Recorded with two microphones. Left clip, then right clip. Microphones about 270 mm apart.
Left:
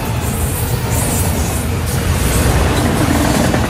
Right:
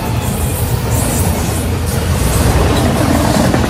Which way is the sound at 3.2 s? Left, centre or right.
Centre.